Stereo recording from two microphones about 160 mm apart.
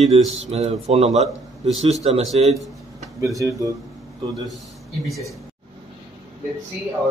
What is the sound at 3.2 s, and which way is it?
Speech, 20° right (ahead or behind).